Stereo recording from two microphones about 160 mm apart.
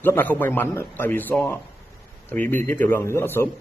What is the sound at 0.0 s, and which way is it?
A man's voice, 10° left (ahead or behind).